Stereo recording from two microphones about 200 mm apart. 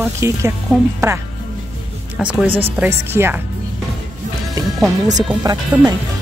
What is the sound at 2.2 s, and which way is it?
Speech, 10° right (ahead or behind).